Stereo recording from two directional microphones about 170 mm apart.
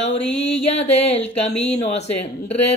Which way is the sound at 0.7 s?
40° left (ahead or behind).